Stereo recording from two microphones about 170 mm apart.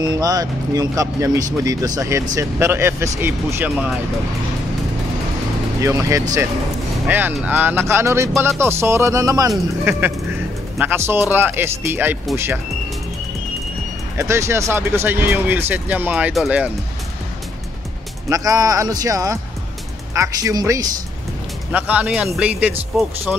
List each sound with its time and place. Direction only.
0.0 s speech: 25° right (ahead or behind)
5.8 s speech: 20° right (ahead or behind)
14.1 s speech: 15° right (ahead or behind)
18.3 s speech: 20° right (ahead or behind)